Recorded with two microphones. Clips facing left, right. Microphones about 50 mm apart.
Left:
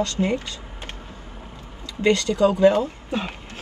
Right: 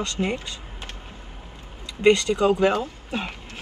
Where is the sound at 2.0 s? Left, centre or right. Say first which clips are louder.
Even; right.